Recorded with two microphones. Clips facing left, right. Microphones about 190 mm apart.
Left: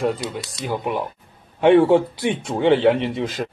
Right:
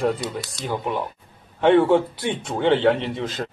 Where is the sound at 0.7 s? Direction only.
15° left (ahead or behind).